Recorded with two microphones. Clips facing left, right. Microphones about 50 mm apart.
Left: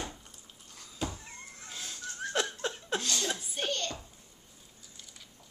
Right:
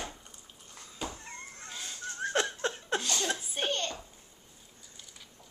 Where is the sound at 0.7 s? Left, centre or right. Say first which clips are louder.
Left 2 dB; centre.